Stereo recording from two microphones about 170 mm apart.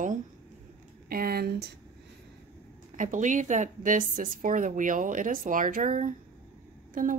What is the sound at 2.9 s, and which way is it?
A woman's voice, 50° right (ahead or behind).